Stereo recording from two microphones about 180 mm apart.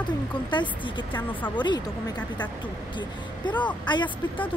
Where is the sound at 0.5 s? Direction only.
25° left (ahead or behind).